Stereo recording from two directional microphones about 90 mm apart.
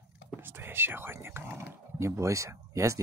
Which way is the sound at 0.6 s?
25° right (ahead or behind).